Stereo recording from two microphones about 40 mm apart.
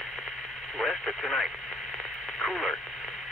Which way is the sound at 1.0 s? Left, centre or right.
Centre.